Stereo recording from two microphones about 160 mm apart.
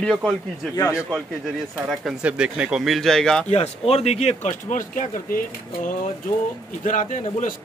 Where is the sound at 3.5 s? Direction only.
40° left (ahead or behind).